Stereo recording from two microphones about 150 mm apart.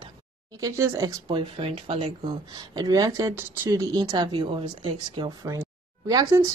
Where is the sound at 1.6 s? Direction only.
35° right (ahead or behind).